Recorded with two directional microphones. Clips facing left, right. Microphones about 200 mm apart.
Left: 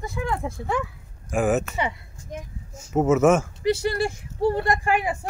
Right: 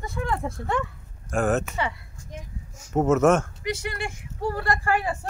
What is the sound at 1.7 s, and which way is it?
Speech, 20° left (ahead or behind).